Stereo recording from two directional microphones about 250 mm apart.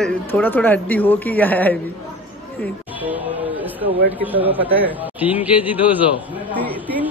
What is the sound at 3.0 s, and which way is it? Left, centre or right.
Music, centre.